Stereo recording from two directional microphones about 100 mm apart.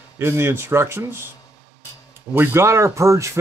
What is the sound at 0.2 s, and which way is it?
Speech, 25° right (ahead or behind).